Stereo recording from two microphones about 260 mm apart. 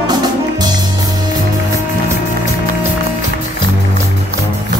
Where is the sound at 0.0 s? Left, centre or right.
Centre.